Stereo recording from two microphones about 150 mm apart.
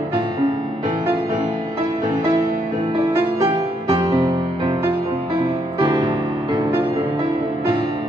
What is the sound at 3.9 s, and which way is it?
Music, 35° right (ahead or behind).